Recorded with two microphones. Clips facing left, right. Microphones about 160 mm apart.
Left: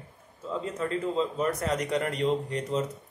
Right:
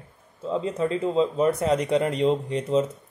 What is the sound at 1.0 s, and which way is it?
Speech, 30° right (ahead or behind).